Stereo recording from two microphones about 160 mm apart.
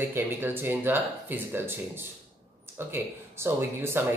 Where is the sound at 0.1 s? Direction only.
15° right (ahead or behind).